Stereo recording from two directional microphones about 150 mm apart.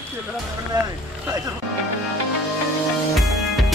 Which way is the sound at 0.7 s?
30° right (ahead or behind).